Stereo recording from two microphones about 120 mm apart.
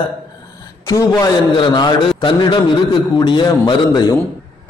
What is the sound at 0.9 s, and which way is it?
Speech, 25° left (ahead or behind).